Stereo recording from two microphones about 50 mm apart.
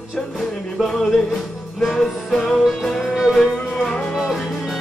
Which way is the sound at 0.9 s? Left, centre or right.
Centre.